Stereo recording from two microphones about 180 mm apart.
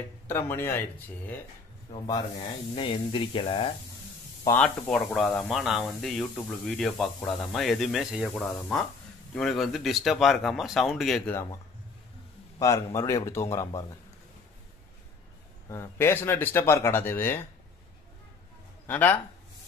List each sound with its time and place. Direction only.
0.3 s speech: 15° left (ahead or behind)
2.0 s speech: 25° left (ahead or behind)
4.5 s speech: 5° left (ahead or behind)
12.5 s speech: 15° left (ahead or behind)
15.7 s speech: 15° left (ahead or behind)
18.9 s speech: 10° left (ahead or behind)